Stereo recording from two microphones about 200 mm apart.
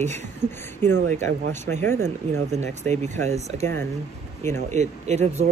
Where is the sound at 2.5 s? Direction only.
35° right (ahead or behind).